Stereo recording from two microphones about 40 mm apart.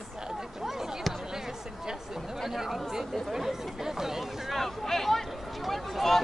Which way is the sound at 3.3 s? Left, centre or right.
Centre.